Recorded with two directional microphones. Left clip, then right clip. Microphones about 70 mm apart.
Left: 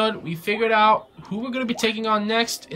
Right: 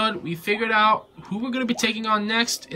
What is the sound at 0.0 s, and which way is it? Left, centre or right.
Speech, centre.